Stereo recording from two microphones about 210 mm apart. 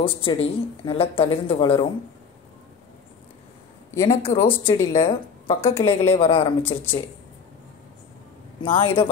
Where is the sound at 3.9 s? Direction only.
15° left (ahead or behind).